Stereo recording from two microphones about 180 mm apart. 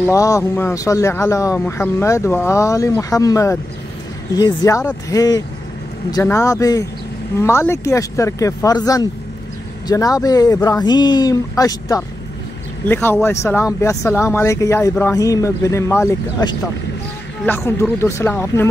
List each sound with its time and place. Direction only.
0.0 s speech: 15° left (ahead or behind)